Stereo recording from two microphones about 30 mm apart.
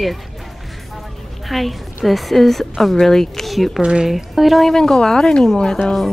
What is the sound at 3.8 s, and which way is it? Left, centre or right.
Speech, right.